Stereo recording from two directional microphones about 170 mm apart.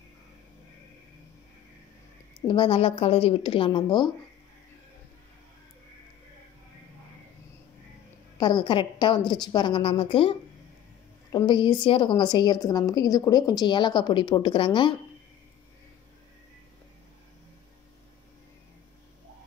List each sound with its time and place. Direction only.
2.4 s a woman's voice: 30° left (ahead or behind)
8.4 s a woman's voice: 30° left (ahead or behind)
11.3 s a woman's voice: 25° left (ahead or behind)